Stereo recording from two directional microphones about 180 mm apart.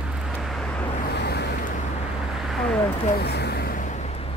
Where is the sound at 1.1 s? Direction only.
70° left (ahead or behind).